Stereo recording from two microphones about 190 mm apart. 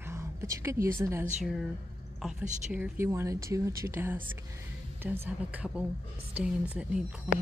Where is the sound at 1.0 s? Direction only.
15° right (ahead or behind).